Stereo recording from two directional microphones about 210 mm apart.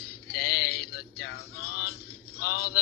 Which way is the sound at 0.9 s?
50° left (ahead or behind).